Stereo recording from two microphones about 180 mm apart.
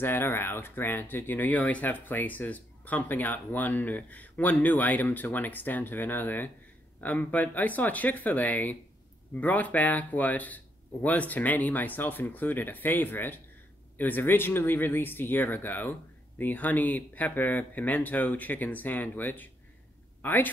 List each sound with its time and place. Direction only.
0.0 s speech: 10° left (ahead or behind)